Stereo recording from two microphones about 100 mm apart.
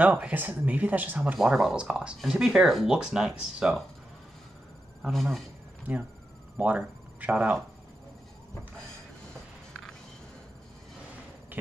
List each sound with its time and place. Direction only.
0.0 s speech: 15° right (ahead or behind)
5.0 s speech: centre (ahead or behind)
6.6 s speech: 15° right (ahead or behind)